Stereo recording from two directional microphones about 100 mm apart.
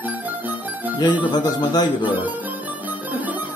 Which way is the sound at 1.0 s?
50° left (ahead or behind).